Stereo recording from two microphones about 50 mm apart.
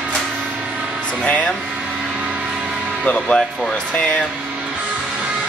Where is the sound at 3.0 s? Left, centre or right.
Left.